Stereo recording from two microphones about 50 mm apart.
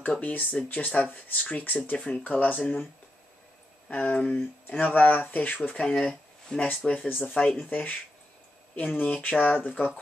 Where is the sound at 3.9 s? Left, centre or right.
Left.